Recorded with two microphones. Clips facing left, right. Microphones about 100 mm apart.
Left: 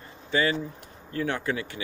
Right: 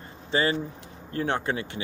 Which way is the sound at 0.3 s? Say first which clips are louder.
Even; 30° right (ahead or behind).